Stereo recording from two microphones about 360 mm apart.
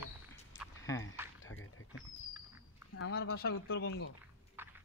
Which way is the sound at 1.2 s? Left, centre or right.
Centre.